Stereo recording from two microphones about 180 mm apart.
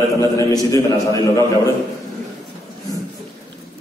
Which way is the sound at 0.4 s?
20° left (ahead or behind).